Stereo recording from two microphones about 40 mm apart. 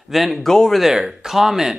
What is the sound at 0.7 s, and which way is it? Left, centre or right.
Speech, centre.